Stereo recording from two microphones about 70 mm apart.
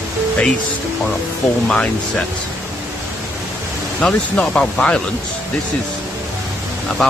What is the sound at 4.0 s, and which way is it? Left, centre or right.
Speech, centre.